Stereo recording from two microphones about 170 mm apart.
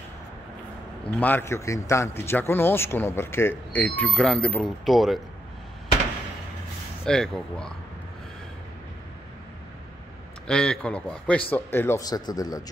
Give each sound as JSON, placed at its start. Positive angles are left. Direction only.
{"t": 1.2, "sound": "a man's voice", "side_deg": 15}
{"t": 7.1, "sound": "a man's voice", "side_deg": 5}
{"t": 10.4, "sound": "a man's voice", "side_deg": 5}